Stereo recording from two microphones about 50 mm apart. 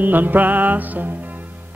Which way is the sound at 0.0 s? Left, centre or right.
Right.